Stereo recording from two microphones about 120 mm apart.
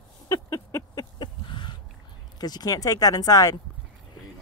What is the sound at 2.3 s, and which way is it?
Speech, 35° left (ahead or behind).